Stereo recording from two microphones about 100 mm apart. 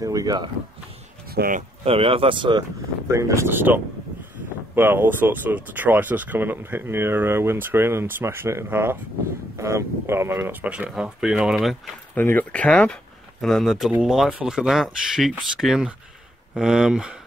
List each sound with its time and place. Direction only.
0.0 s speech: 35° right (ahead or behind)
1.9 s speech: 65° right (ahead or behind)
3.1 s speech: 30° right (ahead or behind); by 11.9 s centre (ahead or behind)
12.2 s speech: 20° left (ahead or behind); by 17.1 s 5° right (ahead or behind)